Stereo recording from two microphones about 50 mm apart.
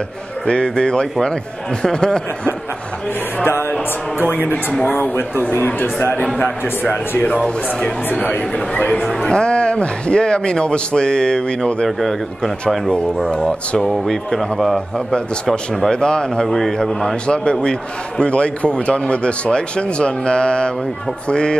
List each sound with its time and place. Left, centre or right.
0.5 s a man's voice: centre
4.3 s a man's voice: left; by 11.9 s centre
12.0 s speech: centre
13.3 s speech: centre
13.7 s speech: centre
15.9 s speech: centre
16.4 s speech: centre
17.3 s a man's voice: centre